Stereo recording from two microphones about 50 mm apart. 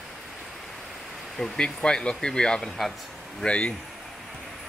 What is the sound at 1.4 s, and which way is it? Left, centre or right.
Speech, centre.